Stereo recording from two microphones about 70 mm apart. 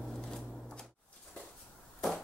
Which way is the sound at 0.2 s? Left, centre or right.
Centre.